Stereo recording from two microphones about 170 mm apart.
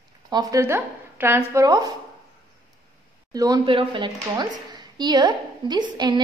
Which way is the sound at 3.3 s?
20° right (ahead or behind).